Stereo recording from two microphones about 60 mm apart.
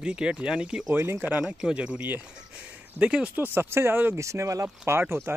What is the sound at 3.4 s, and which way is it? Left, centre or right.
Speech, right.